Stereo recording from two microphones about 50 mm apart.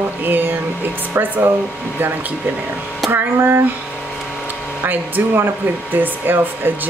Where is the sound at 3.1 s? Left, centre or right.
Right.